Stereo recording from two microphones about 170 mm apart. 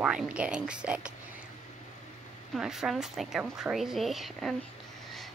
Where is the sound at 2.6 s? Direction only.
Centre (ahead or behind).